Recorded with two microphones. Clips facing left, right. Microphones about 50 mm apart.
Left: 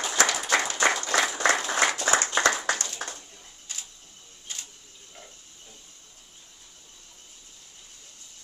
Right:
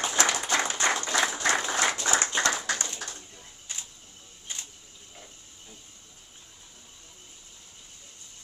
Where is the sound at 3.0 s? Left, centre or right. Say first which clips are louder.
Left 4 dB; left.